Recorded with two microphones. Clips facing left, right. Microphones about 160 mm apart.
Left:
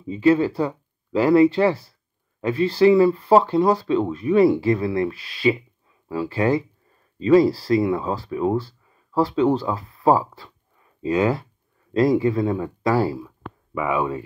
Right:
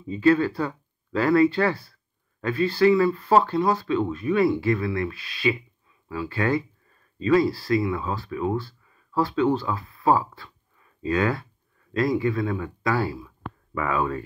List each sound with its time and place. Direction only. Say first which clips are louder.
0.1 s speech: left 2 dB; 20° left (ahead or behind)
13.7 s speech: left 2 dB; 15° left (ahead or behind)